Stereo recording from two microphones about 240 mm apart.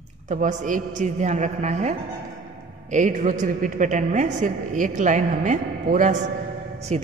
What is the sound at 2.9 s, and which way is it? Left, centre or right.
A woman's voice, right.